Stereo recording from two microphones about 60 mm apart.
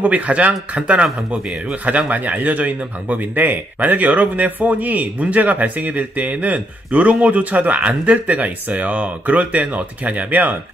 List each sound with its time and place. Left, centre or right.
0.0 s speech: right